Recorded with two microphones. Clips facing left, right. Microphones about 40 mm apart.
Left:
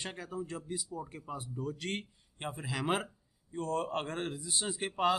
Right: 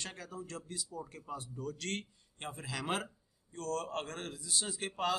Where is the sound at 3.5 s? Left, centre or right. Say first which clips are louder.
Left 4 dB; left.